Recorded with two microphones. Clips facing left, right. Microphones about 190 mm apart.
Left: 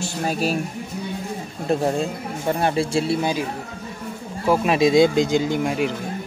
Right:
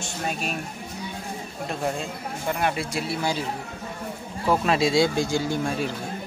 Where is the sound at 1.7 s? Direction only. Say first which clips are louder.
Left 8 dB; 35° left (ahead or behind); by 3.4 s 20° left (ahead or behind).